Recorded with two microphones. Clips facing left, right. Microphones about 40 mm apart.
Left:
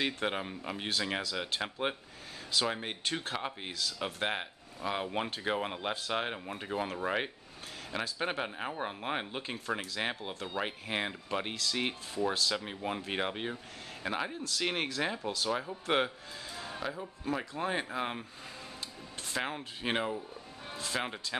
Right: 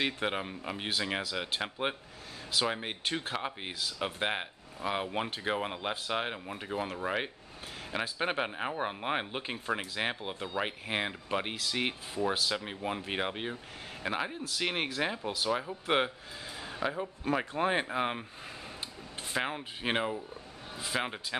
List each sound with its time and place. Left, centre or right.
0.0 s speech: centre
3.6 s speech: centre
7.9 s speech: centre
17.3 s speech: right
19.3 s speech: centre